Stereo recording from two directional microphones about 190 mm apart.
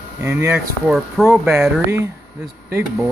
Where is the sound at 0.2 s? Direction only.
10° right (ahead or behind).